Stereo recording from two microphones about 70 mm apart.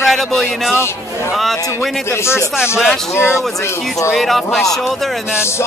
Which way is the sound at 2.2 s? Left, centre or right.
Left.